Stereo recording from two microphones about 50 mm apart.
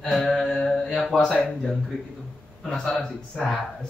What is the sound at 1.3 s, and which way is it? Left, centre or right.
Speech, left.